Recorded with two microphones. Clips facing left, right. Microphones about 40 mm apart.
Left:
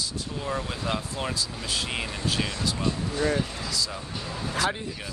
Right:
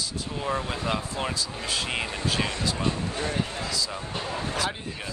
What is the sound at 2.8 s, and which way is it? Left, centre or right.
Speech, right.